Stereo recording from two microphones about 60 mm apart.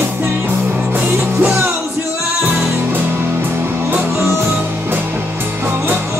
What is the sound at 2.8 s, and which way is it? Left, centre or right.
Music, right.